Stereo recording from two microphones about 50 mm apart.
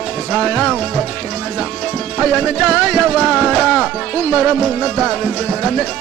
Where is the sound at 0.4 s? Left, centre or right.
Centre.